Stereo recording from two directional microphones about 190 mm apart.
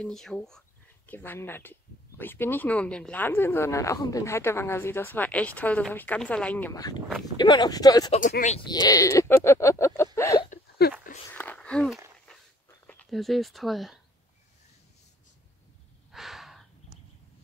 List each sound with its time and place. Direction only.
0.0 s speech: 5° left (ahead or behind)
10.1 s a sound: 15° left (ahead or behind)
12.6 s speech: 5° left (ahead or behind)
16.1 s gasp: centre (ahead or behind)